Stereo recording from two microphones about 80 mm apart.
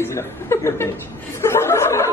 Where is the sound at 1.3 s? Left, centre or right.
Left.